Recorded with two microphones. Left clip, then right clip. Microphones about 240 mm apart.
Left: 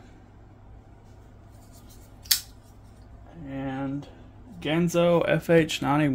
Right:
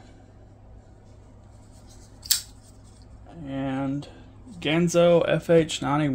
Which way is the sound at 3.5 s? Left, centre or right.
Centre.